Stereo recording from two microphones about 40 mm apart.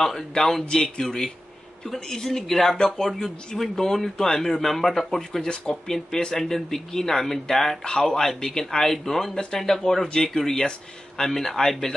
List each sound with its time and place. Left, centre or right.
0.3 s speech: centre
5.5 s speech: centre